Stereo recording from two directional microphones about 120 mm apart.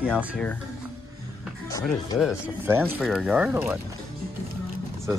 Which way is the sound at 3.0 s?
Centre (ahead or behind).